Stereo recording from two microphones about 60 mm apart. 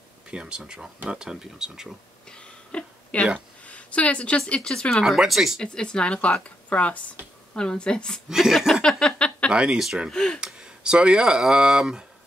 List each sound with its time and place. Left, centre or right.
0.3 s speech: centre
2.2 s a sound: centre
3.3 s speech: left
5.0 s speech: centre
5.6 s speech: centre
8.3 s speech: centre
8.8 s a sound: centre
9.5 s speech: centre
10.1 s speech: centre
10.4 s speech: centre